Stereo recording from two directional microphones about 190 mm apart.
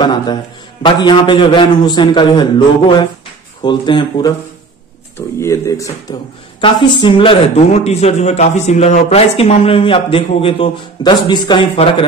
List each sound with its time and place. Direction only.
0.0 s a man's voice: 25° left (ahead or behind)